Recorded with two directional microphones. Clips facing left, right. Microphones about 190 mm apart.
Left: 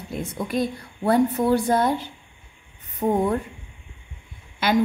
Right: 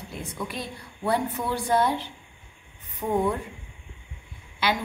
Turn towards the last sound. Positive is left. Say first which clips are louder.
# left 4 dB
turn(degrees=45)  # may be behind; listen again after turning